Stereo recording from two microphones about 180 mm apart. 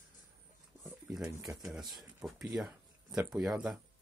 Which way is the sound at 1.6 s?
Centre (ahead or behind).